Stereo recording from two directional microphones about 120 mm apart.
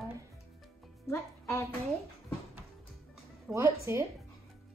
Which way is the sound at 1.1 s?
25° left (ahead or behind).